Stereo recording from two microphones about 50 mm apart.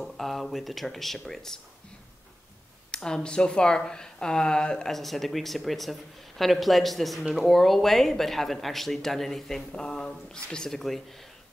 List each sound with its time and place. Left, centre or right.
0.0 s a woman's voice: centre
2.9 s speech: centre
4.9 s a woman's voice: centre
9.7 s speech: centre
10.7 s a woman's voice: centre